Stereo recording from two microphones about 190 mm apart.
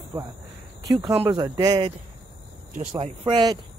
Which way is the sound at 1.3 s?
20° right (ahead or behind).